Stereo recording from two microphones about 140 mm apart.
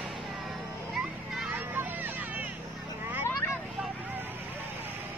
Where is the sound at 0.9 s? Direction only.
5° right (ahead or behind).